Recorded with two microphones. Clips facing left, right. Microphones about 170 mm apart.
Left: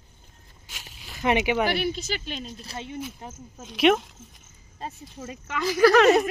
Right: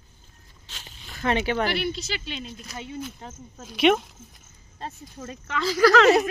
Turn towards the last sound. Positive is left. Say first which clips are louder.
# even
turn(degrees=20)  # may be behind; listen again after turning